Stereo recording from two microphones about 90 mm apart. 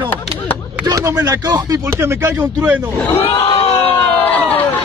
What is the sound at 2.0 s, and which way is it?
Speech, 30° right (ahead or behind).